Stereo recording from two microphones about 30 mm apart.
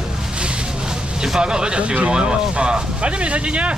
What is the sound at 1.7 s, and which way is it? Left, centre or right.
Speech, right.